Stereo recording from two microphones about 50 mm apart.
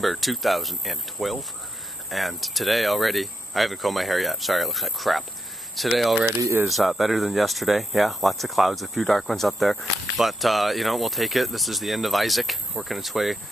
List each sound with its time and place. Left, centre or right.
0.0 s speech: centre
6.2 s speech: right
6.7 s speech: centre